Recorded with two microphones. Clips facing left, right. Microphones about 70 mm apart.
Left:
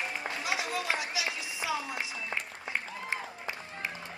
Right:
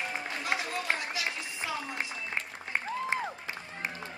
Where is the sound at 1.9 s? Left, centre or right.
Right.